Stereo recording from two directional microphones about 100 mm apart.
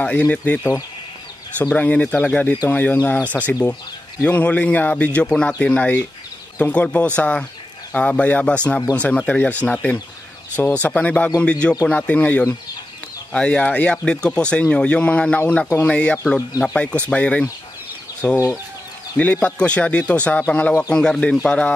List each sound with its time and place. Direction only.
0.0 s speech: 15° left (ahead or behind)
1.6 s speech: 15° left (ahead or behind)
18.3 s speech: 30° left (ahead or behind)
19.1 s speech: 15° left (ahead or behind)